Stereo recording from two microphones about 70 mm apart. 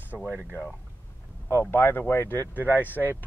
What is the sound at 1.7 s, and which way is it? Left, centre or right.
Speech, left.